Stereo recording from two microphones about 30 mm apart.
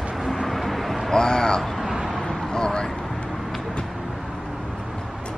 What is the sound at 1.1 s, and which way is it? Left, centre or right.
Speech, left.